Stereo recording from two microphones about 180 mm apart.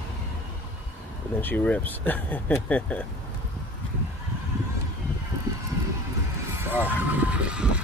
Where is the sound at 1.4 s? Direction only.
10° left (ahead or behind).